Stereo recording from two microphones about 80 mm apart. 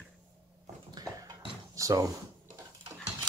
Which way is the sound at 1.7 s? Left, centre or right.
Right.